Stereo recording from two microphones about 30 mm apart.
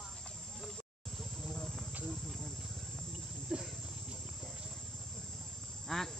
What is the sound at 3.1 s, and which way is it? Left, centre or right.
Cricket, centre.